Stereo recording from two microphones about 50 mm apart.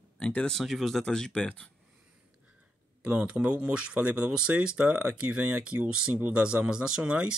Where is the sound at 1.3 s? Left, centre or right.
Left.